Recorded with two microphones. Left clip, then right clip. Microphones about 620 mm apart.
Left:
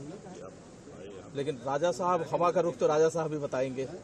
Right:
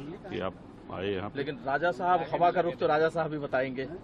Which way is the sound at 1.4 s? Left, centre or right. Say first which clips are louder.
Left 1 dB; left.